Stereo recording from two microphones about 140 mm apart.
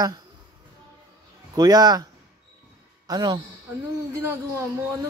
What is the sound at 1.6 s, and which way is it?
Speech, 30° right (ahead or behind).